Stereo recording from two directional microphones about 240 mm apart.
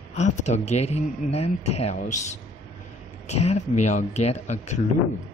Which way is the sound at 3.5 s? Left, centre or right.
Left.